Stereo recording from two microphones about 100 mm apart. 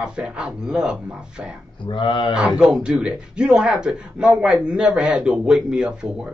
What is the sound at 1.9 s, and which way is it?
Speech, 55° left (ahead or behind).